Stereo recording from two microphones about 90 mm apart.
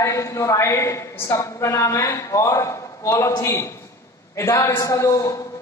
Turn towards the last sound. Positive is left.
turn(degrees=35)  # may be behind; listen again after turning